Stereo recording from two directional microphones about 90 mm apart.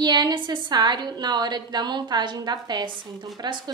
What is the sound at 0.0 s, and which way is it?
A woman's voice, 50° right (ahead or behind).